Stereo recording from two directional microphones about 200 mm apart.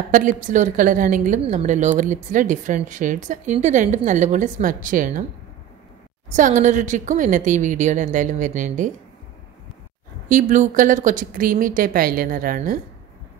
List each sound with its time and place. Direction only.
0.1 s a woman's voice: 40° right (ahead or behind)
6.3 s a woman's voice: 40° right (ahead or behind)
10.2 s speech: 40° right (ahead or behind)